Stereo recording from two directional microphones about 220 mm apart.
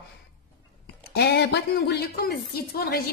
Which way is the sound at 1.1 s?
50° left (ahead or behind).